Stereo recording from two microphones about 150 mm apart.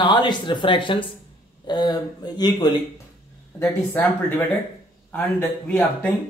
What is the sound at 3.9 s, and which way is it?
A man's voice, 10° left (ahead or behind).